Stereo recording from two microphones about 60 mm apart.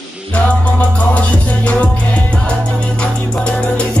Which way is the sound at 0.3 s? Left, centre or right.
Left.